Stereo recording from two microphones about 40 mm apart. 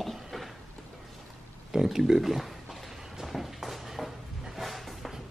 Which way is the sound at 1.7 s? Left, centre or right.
Centre.